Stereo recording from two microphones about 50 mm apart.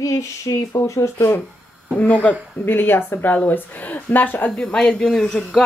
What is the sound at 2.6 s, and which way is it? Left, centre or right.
A woman's voice, left.